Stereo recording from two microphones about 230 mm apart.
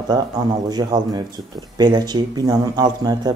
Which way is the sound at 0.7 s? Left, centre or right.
Centre.